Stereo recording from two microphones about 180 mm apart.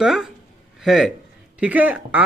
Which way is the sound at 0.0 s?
Centre (ahead or behind).